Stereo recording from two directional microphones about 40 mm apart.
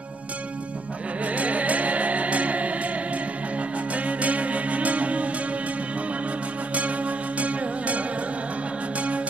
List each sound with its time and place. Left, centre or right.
1.2 s music: right
3.9 s music: right
6.7 s music: right